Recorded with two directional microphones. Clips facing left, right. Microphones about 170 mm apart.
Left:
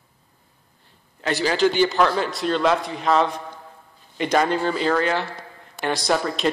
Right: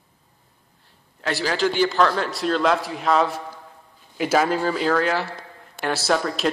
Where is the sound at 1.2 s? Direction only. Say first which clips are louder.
Left 3 dB; centre (ahead or behind).